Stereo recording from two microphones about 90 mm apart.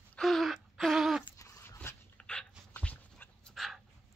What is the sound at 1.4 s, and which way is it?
Dog, 30° left (ahead or behind).